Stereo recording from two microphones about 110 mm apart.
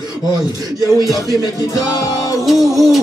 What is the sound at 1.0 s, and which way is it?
Music, 35° right (ahead or behind).